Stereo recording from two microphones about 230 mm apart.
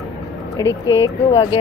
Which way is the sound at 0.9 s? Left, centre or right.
Centre.